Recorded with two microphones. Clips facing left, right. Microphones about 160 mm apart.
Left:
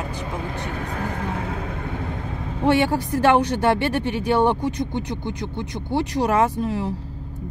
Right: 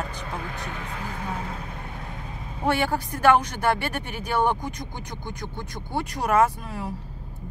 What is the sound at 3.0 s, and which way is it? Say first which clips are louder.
Speech: right 1 dB; 25° left (ahead or behind).